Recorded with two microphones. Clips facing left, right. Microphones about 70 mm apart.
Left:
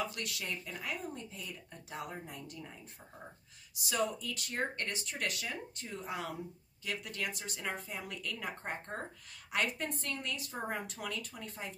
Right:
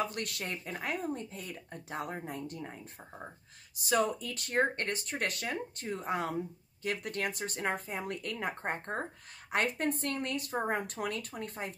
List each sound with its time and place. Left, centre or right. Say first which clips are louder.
0.0 s speech: right 4 dB; right